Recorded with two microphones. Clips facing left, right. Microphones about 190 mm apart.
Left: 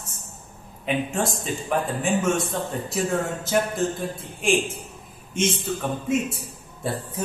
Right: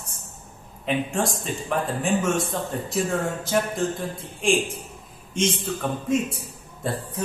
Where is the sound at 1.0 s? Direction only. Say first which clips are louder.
Even; centre (ahead or behind).